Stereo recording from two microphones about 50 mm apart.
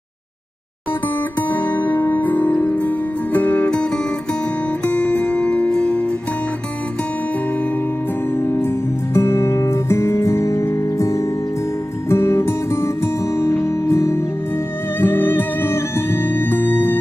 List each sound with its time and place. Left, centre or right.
1.5 s music: left
4.9 s music: left
5.7 s music: centre
8.6 s music: left
12.1 s music: left
15.0 s music: left